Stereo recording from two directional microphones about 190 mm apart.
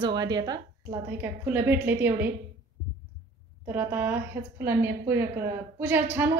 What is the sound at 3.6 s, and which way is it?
A woman's voice, 10° right (ahead or behind).